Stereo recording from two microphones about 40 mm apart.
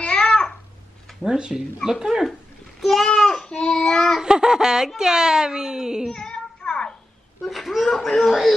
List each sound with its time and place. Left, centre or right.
0.0 s babbling: left
1.2 s speech: centre
2.8 s speech: centre
3.2 s child singing: centre
3.4 s child singing: left
4.2 s speech: centre
6.1 s child singing: left
7.4 s speech: centre